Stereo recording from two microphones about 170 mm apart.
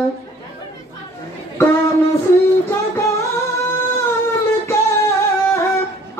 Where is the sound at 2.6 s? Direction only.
15° left (ahead or behind).